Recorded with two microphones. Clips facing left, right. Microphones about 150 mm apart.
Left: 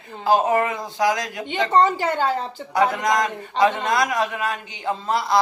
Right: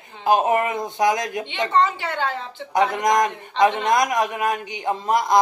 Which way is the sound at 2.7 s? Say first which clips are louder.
Right 1 dB; 20° right (ahead or behind).